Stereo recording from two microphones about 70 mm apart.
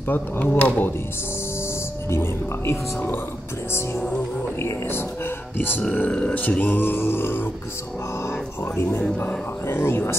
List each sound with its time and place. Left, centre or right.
0.1 s speech: left
2.0 s speech: left
5.6 s speech: left
8.7 s speech: left